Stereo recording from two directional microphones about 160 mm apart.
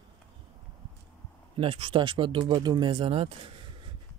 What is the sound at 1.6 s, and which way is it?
Speech, 35° right (ahead or behind).